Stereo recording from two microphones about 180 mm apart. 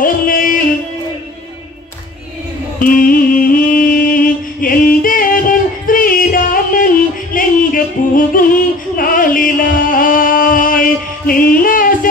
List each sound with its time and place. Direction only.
0.0 s music: 50° left (ahead or behind)
2.8 s music: 50° left (ahead or behind)